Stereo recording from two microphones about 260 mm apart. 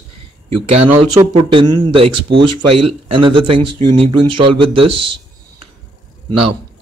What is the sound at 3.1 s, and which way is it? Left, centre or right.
Speech, centre.